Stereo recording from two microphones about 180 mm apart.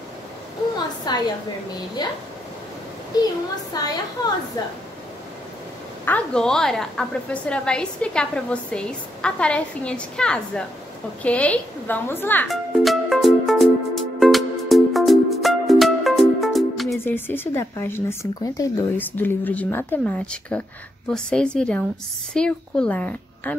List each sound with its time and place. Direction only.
1.1 s a woman's voice: 25° left (ahead or behind)
6.0 s a woman's voice: 5° left (ahead or behind)
12.4 s music: centre (ahead or behind)
17.0 s a woman's voice: 10° left (ahead or behind)